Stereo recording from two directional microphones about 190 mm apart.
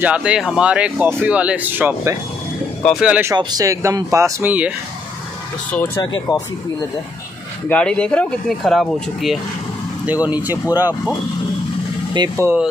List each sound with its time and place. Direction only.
0.0 s speech: 5° right (ahead or behind)
6.1 s speech: 20° left (ahead or behind)
7.6 s speech: 5° left (ahead or behind); by 10.7 s 10° right (ahead or behind)
12.1 s speech: 20° right (ahead or behind)